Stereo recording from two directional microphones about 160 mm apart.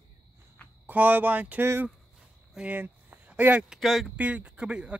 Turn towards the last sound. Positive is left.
turn(degrees=-5)  # may be behind; listen again after turning